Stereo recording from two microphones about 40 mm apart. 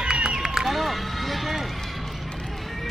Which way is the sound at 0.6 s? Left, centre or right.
Centre.